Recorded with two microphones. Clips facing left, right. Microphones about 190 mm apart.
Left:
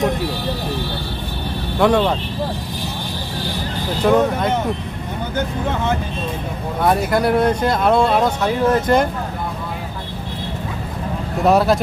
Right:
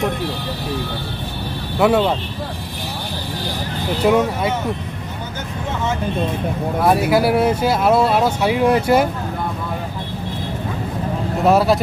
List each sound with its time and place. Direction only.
1.8 s speech: 5° right (ahead or behind)
4.0 s speech: 10° right (ahead or behind)
6.8 s speech: 5° right (ahead or behind)
11.4 s speech: centre (ahead or behind)